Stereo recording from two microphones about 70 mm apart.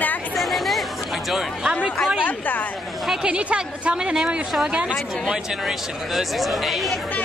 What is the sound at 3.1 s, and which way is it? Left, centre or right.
Speech, centre.